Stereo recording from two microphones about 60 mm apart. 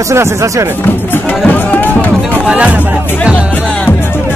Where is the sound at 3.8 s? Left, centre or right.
Left.